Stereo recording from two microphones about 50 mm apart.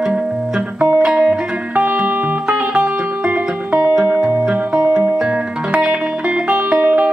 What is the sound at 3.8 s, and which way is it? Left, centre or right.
Music, centre.